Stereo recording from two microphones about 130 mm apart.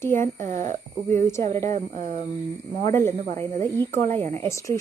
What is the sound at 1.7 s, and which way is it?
Speech, 75° right (ahead or behind).